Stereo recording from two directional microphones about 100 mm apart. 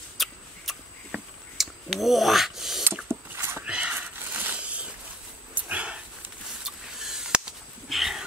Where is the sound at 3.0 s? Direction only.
25° right (ahead or behind).